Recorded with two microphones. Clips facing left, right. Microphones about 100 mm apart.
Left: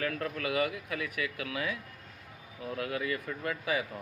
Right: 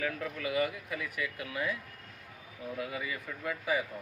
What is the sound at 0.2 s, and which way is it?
Speech, 75° left (ahead or behind).